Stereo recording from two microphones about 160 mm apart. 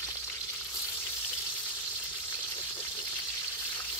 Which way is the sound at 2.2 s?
15° left (ahead or behind).